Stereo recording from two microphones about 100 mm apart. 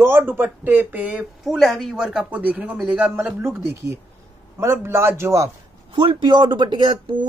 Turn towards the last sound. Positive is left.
turn(degrees=-50)  # may be behind; listen again after turning